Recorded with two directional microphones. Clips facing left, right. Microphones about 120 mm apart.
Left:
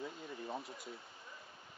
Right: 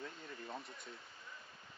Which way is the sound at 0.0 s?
20° left (ahead or behind).